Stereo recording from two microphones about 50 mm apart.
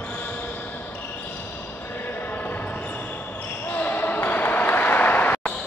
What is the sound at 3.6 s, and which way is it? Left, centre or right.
Basketball bounce, left.